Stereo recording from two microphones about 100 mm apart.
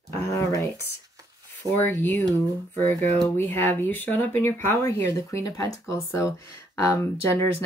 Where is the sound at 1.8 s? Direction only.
20° left (ahead or behind).